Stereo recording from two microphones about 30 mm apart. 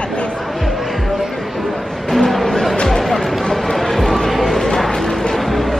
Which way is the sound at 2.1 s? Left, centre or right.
Centre.